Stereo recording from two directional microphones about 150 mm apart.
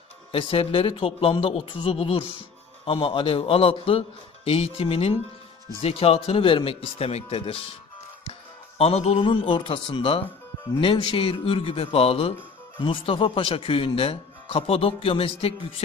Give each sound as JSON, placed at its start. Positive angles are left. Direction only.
{"t": 0.3, "sound": "speech", "side_deg": 35}